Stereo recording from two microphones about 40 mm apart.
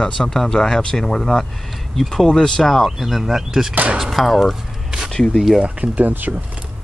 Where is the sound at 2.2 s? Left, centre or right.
Centre.